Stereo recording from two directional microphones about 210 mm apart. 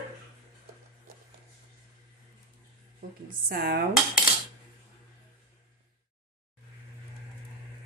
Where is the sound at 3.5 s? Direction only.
45° right (ahead or behind).